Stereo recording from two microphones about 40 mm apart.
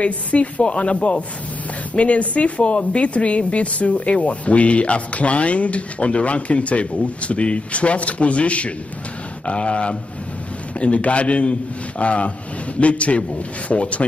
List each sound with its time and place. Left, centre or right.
0.0 s a woman's voice: left